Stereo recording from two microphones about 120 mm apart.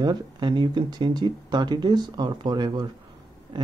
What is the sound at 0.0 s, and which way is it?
Speech, 40° right (ahead or behind).